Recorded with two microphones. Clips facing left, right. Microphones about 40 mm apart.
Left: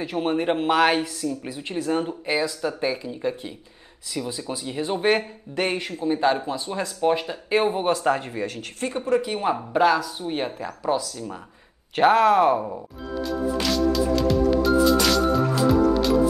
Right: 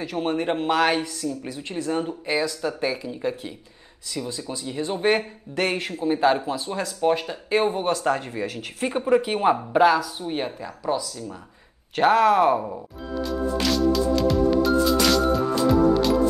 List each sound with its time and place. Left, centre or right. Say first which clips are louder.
0.2 s speech: left 1 dB; centre
1.2 s speech: left 1 dB; centre
4.3 s speech: left 1 dB; left
5.1 s speech: even; centre
5.9 s speech: right 2 dB; centre
9.8 s speech: right 1 dB; centre
11.9 s music: left 1 dB; centre